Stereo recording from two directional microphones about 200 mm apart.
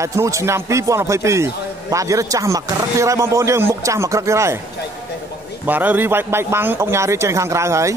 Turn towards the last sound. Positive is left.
turn(degrees=-15)  # may be behind; listen again after turning